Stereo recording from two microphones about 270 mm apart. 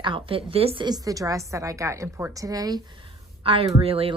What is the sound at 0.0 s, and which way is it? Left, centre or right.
A woman's voice, centre.